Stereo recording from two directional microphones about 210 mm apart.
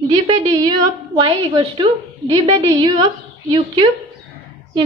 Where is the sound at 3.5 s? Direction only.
20° right (ahead or behind).